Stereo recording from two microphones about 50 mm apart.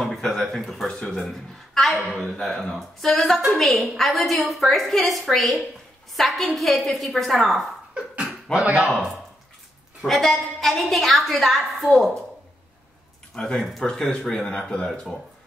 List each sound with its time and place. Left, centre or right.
0.0 s a sound: centre
1.0 s a woman's voice: centre
2.1 s speech: centre
2.4 s a woman's voice: centre
8.5 s speech: centre
10.0 s a woman's voice: centre
13.3 s speech: centre
13.6 s a woman's voice: centre